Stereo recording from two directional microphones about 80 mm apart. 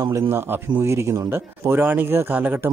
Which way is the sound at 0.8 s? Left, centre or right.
Right.